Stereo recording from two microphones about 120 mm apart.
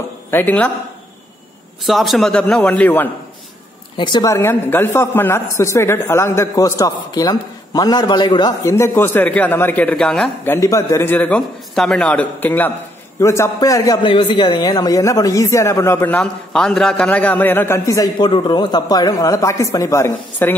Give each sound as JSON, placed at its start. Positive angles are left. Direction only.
{"t": 0.3, "sound": "a man's voice", "side_deg": 15}
{"t": 1.8, "sound": "a man's voice", "side_deg": 0}
{"t": 3.9, "sound": "speech", "side_deg": 40}
{"t": 4.3, "sound": "a man's voice", "side_deg": 20}
{"t": 8.6, "sound": "a man's voice", "side_deg": 20}
{"t": 10.4, "sound": "a man's voice", "side_deg": 25}
{"t": 11.1, "sound": "a man's voice", "side_deg": 15}
{"t": 14.0, "sound": "a man's voice", "side_deg": 45}
{"t": 16.2, "sound": "a man's voice", "side_deg": 5}
{"t": 18.3, "sound": "a man's voice", "side_deg": 40}